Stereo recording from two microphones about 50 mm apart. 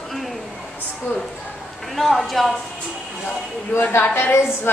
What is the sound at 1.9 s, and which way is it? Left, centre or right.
Speech, centre.